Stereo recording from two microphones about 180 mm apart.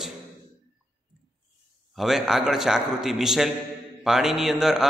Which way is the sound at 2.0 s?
Centre (ahead or behind).